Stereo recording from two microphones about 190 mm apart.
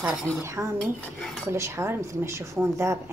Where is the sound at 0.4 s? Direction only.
15° right (ahead or behind).